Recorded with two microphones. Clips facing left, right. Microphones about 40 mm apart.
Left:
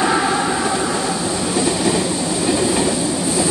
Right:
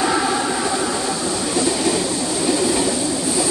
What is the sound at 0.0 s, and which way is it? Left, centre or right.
Train, centre.